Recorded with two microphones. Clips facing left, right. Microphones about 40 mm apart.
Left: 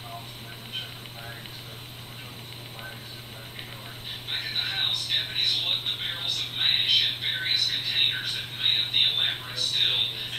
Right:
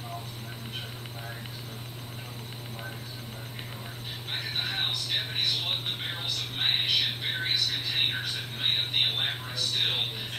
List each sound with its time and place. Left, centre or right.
4.3 s speech: left